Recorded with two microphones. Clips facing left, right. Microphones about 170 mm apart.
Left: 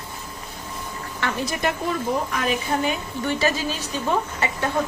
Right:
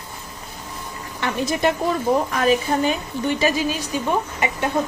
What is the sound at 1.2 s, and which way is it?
Speech, 20° right (ahead or behind).